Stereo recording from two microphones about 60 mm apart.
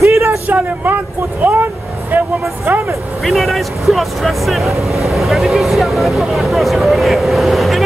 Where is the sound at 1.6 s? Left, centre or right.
Right.